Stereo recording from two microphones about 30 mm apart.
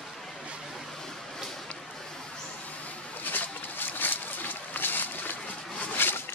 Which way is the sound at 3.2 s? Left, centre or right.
Left.